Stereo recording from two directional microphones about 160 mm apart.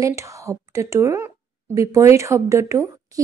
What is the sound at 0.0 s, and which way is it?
A woman's voice, 20° right (ahead or behind).